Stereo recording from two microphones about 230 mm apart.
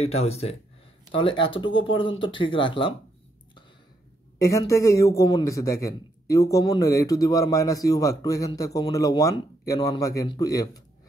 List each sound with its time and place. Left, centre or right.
0.0 s speech: left
4.4 s a man's voice: centre